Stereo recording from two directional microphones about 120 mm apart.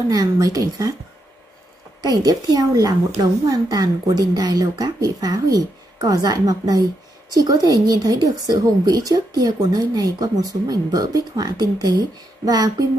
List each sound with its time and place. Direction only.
0.1 s a woman's voice: 30° right (ahead or behind)
2.0 s speech: 30° right (ahead or behind)